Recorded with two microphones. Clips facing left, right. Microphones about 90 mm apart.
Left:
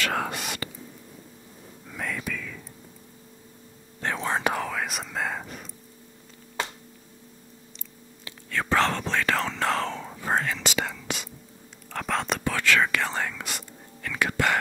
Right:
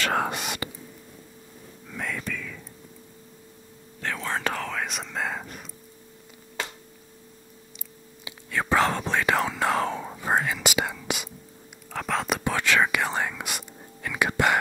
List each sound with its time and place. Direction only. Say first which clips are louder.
0.0 s speech: right 2 dB; 30° right (ahead or behind)
1.9 s whispering: even; centre (ahead or behind)
4.0 s whispering: left 2 dB; 20° left (ahead or behind)
4.7 s speech: even; centre (ahead or behind)
8.3 s whispering: right 1 dB; 10° right (ahead or behind)
11.9 s speech: right 1 dB; centre (ahead or behind)
12.4 s speech: right 1 dB; 20° right (ahead or behind)